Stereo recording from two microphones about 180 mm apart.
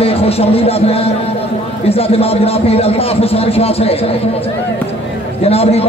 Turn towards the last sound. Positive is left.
turn(degrees=35)  # may be behind; listen again after turning